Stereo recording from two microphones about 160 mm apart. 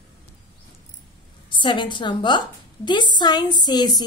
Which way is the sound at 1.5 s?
30° left (ahead or behind).